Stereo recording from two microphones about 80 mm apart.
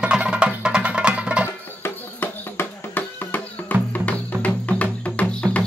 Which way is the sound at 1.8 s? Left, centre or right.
Left.